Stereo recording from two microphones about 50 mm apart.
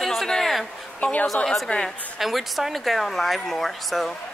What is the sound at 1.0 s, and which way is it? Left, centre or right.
Speech, left.